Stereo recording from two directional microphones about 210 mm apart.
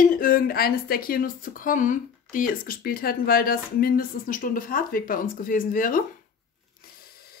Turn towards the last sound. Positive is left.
turn(degrees=40)  # may be behind; listen again after turning